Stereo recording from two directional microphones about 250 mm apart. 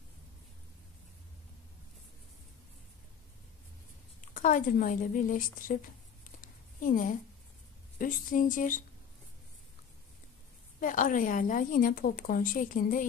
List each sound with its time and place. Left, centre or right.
4.2 s a woman's voice: left
6.4 s a sound: left
8.0 s a woman's voice: left
10.8 s a woman's voice: left